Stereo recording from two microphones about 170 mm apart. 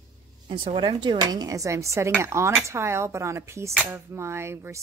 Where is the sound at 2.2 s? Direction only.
15° right (ahead or behind).